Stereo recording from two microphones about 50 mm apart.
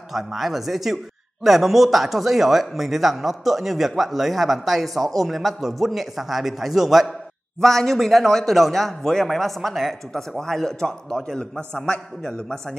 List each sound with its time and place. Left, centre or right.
0.1 s a man's voice: centre